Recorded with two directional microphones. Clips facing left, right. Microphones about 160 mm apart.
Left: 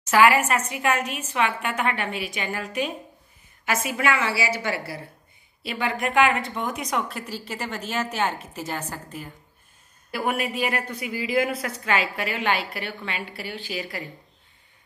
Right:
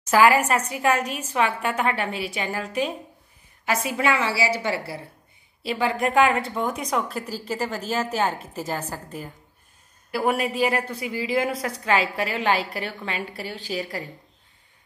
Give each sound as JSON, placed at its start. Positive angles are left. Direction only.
{"t": 0.1, "sound": "a woman's voice", "side_deg": -35}